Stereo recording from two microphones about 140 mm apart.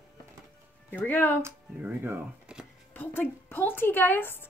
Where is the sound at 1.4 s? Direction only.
15° right (ahead or behind).